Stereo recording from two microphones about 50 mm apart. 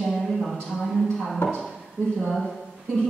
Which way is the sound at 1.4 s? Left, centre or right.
Left.